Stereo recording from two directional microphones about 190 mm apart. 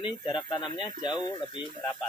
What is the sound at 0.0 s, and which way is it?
Speech, 25° left (ahead or behind).